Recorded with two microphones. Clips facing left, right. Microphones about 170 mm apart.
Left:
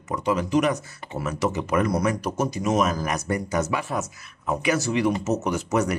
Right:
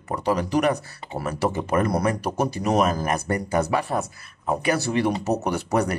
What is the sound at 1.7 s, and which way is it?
Speech, 55° right (ahead or behind).